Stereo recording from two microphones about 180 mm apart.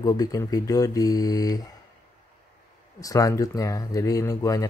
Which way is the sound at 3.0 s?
20° left (ahead or behind).